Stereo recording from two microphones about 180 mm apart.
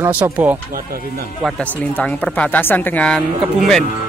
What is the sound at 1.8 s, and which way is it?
Speech, 10° left (ahead or behind).